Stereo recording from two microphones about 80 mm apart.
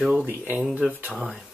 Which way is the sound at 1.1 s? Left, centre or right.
Centre.